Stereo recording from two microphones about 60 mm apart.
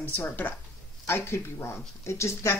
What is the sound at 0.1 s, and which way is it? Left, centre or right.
Speech, left.